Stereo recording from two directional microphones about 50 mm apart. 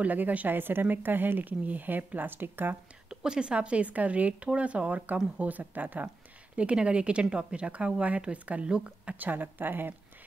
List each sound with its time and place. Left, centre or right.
0.0 s speech: right
3.3 s speech: centre; by 6.0 s right
6.5 s speech: right
9.1 s speech: right